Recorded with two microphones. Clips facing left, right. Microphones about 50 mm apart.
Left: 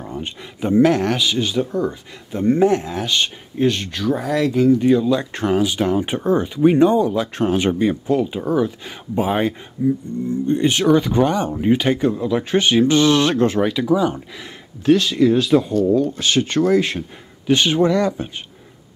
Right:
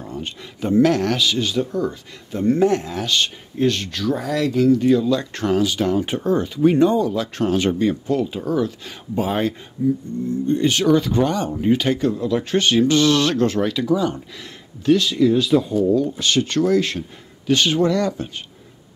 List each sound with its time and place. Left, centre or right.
0.0 s speech: left
15.0 s speech: left
15.5 s speech: left
16.2 s speech: left